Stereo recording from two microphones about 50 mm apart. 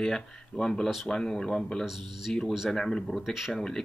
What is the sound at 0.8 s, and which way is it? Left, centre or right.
Speech, centre.